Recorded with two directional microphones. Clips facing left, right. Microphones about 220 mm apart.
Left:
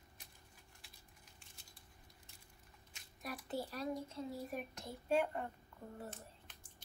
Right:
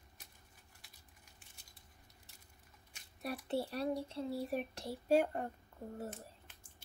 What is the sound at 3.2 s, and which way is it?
Speech, 30° right (ahead or behind).